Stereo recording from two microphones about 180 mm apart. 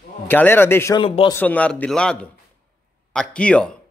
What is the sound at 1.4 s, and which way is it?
A man's voice, 10° left (ahead or behind).